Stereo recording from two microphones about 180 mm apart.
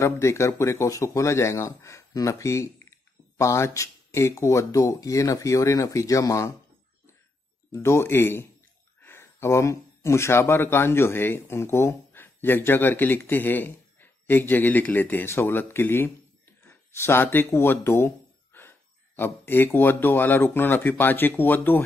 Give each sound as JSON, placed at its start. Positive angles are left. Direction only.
{"t": 0.0, "sound": "speech", "side_deg": 15}
{"t": 7.7, "sound": "speech", "side_deg": 15}